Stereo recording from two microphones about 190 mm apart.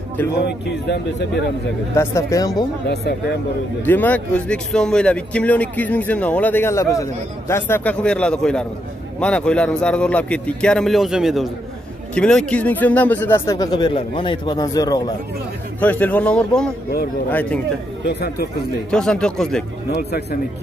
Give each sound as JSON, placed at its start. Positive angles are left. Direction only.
{"t": 0.5, "sound": "speech", "side_deg": 60}
{"t": 2.0, "sound": "speech", "side_deg": 15}
{"t": 2.9, "sound": "speech", "side_deg": 60}
{"t": 3.8, "sound": "a man's voice", "side_deg": 10}
{"t": 15.8, "sound": "speech", "side_deg": 10}
{"t": 18.0, "sound": "speech", "side_deg": 55}
{"t": 18.9, "sound": "a man's voice", "side_deg": 5}
{"t": 20.0, "sound": "speech", "side_deg": 60}